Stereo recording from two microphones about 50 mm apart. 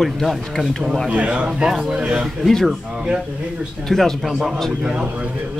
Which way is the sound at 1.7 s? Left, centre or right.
Centre.